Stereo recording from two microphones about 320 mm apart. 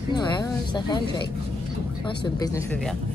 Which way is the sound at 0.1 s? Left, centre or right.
Centre.